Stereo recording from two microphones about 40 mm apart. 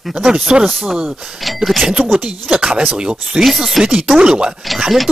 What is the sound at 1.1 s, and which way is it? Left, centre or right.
Speech, centre.